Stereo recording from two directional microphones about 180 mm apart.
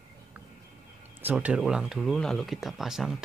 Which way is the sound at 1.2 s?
5° right (ahead or behind).